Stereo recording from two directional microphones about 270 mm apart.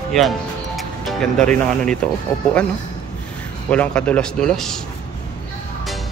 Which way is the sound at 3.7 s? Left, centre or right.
Centre.